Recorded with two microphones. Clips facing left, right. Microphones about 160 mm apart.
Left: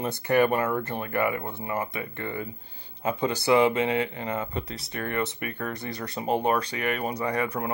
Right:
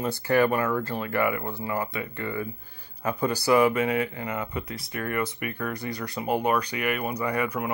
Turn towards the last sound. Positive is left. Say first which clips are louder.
# even
turn(degrees=30)  # may be behind; listen again after turning